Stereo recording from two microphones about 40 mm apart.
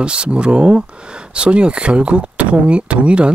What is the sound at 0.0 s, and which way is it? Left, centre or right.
Speech, right.